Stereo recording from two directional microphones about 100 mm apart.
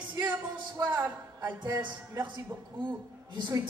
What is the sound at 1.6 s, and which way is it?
Speech, 50° right (ahead or behind).